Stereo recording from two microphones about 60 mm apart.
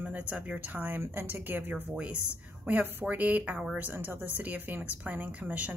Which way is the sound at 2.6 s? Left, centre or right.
Right.